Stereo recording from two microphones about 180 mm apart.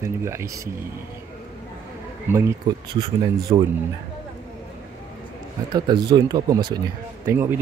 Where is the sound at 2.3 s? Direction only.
15° right (ahead or behind).